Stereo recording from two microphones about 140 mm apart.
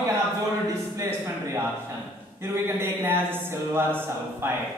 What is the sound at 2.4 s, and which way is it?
Speech, 15° right (ahead or behind).